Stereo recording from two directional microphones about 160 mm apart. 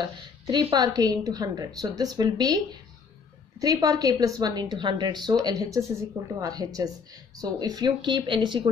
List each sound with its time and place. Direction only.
0.0 s a woman's voice: 30° right (ahead or behind)